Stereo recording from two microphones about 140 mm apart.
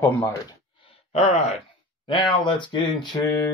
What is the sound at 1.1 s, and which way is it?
Speech, 50° left (ahead or behind).